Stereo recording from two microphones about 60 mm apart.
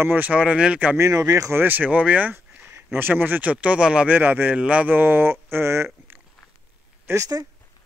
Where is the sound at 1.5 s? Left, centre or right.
Right.